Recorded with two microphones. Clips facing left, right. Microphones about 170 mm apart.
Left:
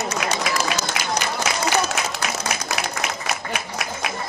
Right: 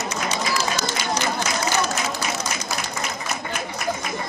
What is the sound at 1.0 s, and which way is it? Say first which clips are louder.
Run: even; 85° left.